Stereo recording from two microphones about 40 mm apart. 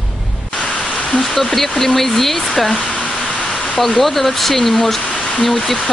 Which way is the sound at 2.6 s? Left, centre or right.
Left.